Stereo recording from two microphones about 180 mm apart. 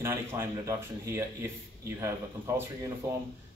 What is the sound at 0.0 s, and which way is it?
Speech, 15° right (ahead or behind).